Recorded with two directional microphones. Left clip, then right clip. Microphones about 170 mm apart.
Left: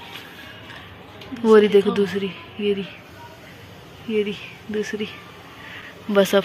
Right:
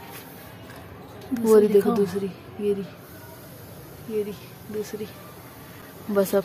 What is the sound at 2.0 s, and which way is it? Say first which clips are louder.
Speech: left 3 dB; centre (ahead or behind).